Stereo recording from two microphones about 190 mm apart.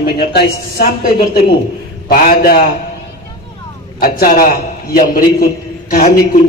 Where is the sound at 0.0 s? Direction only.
55° left (ahead or behind).